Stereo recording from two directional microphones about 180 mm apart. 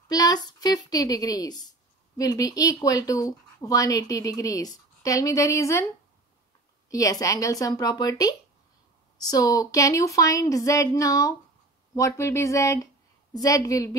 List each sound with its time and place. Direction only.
0.1 s speech: 20° left (ahead or behind)
6.9 s speech: 20° left (ahead or behind)